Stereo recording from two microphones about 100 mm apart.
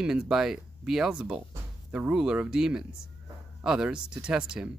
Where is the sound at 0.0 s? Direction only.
5° right (ahead or behind).